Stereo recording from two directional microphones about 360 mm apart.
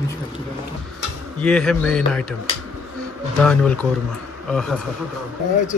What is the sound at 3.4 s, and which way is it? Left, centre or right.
Speech, centre.